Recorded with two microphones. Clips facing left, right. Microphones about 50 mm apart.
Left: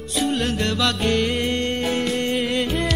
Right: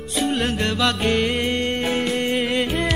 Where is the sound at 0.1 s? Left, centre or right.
Centre.